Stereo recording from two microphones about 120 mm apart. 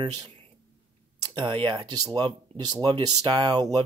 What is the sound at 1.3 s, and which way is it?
Speech, 45° right (ahead or behind).